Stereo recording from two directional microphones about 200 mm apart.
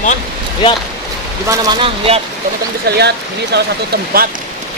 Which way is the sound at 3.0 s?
55° right (ahead or behind).